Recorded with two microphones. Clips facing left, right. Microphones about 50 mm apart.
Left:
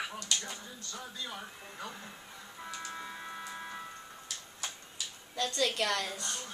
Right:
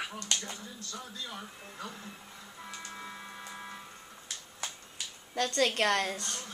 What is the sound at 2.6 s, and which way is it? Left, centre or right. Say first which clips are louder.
Music: left 2 dB; centre.